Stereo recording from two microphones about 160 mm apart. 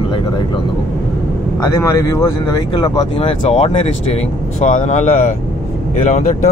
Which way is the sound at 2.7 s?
35° left (ahead or behind).